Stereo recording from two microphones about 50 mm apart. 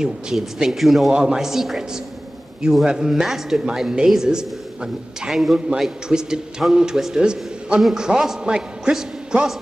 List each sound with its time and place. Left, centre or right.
0.0 s a man's voice: centre
0.7 s a man's voice: centre
1.1 s a man's voice: centre
5.3 s a man's voice: centre
5.8 s a man's voice: centre